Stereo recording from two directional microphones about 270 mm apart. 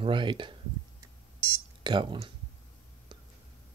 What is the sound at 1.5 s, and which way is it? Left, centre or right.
Cash register, centre.